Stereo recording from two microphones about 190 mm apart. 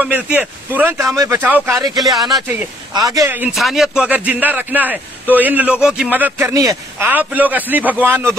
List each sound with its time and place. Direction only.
0.0 s a man's voice: 5° right (ahead or behind)
2.9 s speech: 20° right (ahead or behind)
3.5 s a man's voice: centre (ahead or behind)